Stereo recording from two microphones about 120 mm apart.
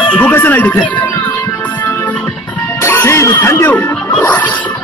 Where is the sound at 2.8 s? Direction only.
20° left (ahead or behind).